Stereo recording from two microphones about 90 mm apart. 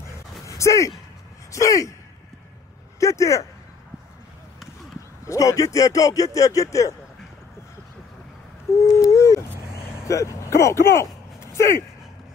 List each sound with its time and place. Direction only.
0.5 s speech: 35° left (ahead or behind)
3.0 s speech: 35° left (ahead or behind)
5.2 s speech: 35° left (ahead or behind)
8.8 s a sound: 35° left (ahead or behind)
10.0 s speech: 35° left (ahead or behind)